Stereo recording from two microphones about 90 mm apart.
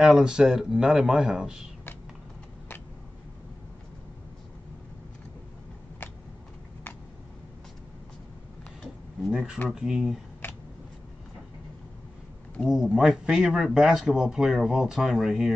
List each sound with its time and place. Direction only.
0.0 s speech: 5° right (ahead or behind)
9.2 s speech: 5° right (ahead or behind)
10.4 s a sound: 20° left (ahead or behind)
12.6 s speech: 5° right (ahead or behind)